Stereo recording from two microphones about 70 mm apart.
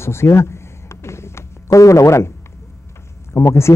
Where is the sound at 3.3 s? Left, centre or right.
Left.